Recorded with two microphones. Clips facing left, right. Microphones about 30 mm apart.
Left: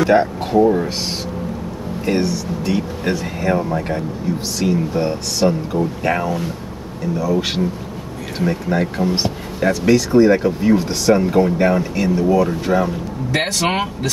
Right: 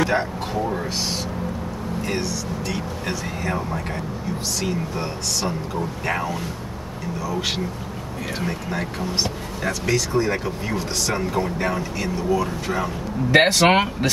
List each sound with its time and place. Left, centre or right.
0.0 s speech: centre
2.0 s speech: left
8.7 s speech: centre
13.3 s speech: right